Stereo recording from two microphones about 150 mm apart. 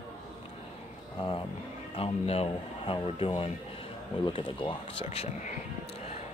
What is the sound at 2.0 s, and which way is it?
Speech, 40° left (ahead or behind).